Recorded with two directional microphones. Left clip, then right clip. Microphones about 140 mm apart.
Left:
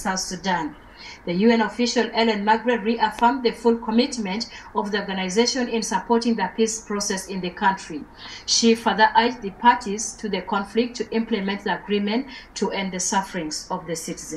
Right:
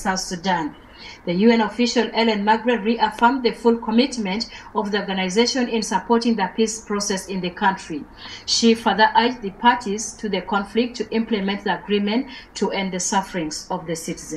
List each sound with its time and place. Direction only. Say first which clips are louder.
0.4 s a woman's voice: right 2 dB; 25° right (ahead or behind)